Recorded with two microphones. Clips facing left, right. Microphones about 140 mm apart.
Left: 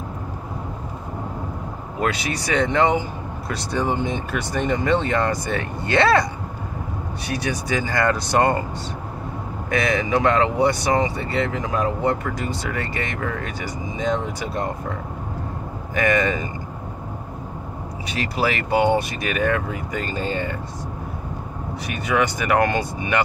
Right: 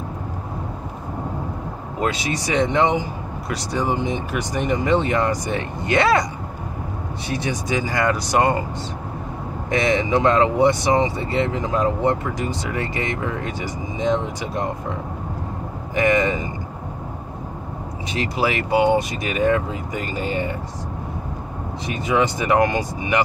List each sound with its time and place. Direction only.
2.0 s speech: 20° right (ahead or behind)
7.3 s speech: 20° right (ahead or behind)
9.7 s speech: 25° right (ahead or behind)
15.9 s speech: 20° right (ahead or behind)
18.1 s speech: 20° right (ahead or behind)
21.8 s speech: 25° right (ahead or behind)